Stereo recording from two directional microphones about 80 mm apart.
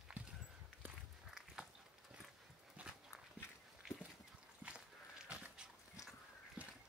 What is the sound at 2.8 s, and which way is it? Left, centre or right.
Dog, centre.